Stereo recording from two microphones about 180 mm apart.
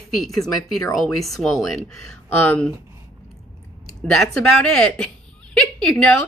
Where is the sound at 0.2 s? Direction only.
Centre (ahead or behind).